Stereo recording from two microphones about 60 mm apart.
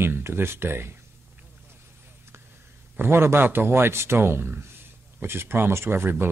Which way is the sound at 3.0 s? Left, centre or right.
Right.